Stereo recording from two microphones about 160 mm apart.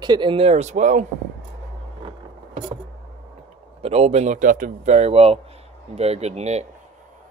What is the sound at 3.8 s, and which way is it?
Speech, 40° right (ahead or behind).